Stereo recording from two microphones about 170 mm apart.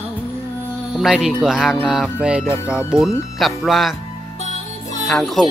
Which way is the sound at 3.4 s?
Centre (ahead or behind).